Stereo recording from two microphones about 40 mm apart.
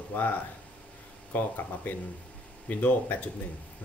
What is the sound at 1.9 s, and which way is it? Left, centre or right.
Speech, left.